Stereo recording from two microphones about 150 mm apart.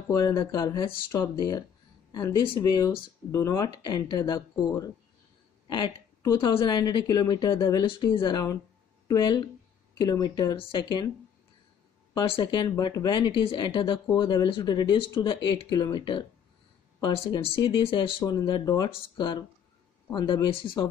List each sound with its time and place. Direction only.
0.1 s a woman's voice: 25° left (ahead or behind)
12.1 s speech: 30° left (ahead or behind)